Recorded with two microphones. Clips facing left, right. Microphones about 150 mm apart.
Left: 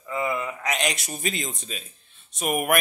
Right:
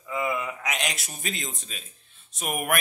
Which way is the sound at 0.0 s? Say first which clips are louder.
Left 1 dB; 5° right (ahead or behind).